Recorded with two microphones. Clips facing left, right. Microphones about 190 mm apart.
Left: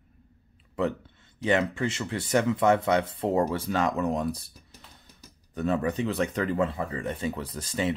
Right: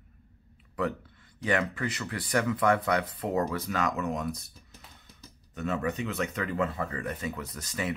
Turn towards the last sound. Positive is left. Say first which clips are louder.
# left 5 dB
turn(degrees=30)  # may be behind; listen again after turning